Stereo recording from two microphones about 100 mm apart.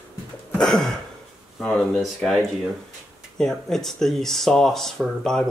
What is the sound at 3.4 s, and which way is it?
Speech, 5° left (ahead or behind).